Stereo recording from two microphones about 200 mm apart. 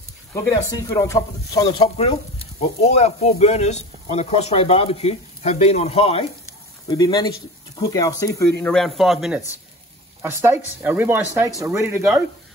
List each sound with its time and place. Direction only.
0.3 s speech: 15° left (ahead or behind)
6.9 s speech: 20° left (ahead or behind)
8.5 s speech: 5° left (ahead or behind); by 12.2 s 10° right (ahead or behind)